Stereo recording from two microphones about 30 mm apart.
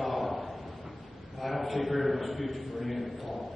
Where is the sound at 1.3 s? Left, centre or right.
Centre.